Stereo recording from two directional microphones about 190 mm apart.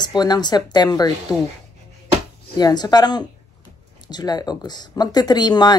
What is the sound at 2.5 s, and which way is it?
Speech, 20° left (ahead or behind).